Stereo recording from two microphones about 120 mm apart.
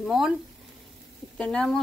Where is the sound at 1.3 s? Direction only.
5° left (ahead or behind).